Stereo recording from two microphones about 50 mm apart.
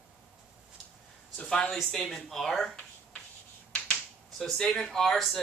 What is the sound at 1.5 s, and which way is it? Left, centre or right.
Speech, centre.